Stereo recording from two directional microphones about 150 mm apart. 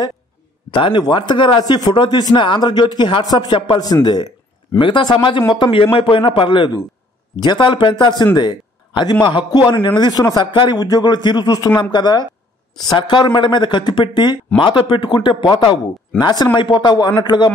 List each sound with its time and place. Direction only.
0.7 s a man's voice: 35° left (ahead or behind)